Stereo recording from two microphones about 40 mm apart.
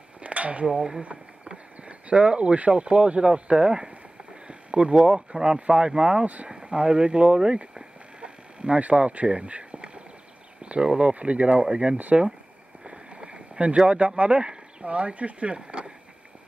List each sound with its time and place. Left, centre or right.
0.2 s dishes: right
0.7 s speech: centre
1.9 s speech: right
4.5 s a sound: right
5.0 s speech: right
6.2 s speech: right
6.5 s a sound: right
10.6 s speech: right
12.8 s a sound: right
14.5 s speech: right